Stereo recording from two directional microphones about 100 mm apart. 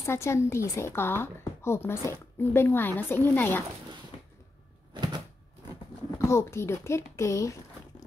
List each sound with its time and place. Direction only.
0.0 s speech: 25° left (ahead or behind)
4.9 s a sound: 50° right (ahead or behind)
6.1 s speech: 25° left (ahead or behind)